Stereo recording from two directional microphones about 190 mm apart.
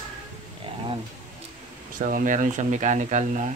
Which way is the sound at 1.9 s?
45° right (ahead or behind).